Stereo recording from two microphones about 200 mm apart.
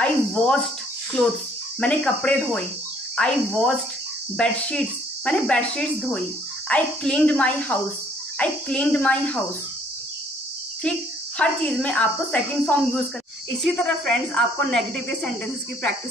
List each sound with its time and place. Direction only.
0.0 s speech: 5° left (ahead or behind)
1.8 s a woman's voice: 5° left (ahead or behind)
10.8 s a woman's voice: 5° left (ahead or behind)